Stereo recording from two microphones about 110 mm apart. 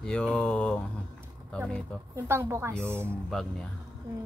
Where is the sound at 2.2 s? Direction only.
25° right (ahead or behind).